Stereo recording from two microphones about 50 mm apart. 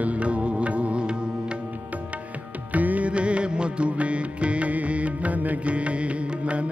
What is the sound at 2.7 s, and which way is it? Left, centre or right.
Music, right.